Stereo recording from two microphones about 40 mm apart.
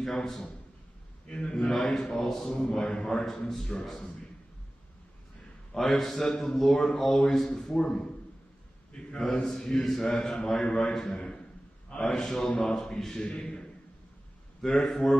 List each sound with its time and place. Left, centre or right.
0.0 s a man's voice: centre
1.3 s a man's voice: left
1.7 s a man's voice: centre
2.7 s a man's voice: left
5.8 s a man's voice: centre
9.2 s a man's voice: centre
12.1 s a man's voice: centre
14.7 s a man's voice: centre